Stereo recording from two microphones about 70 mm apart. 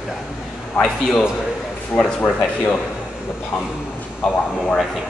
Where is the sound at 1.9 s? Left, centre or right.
Left.